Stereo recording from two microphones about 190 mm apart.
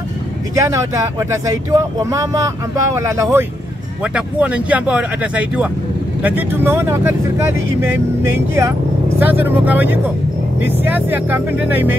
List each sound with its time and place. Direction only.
0.6 s speech: 15° right (ahead or behind)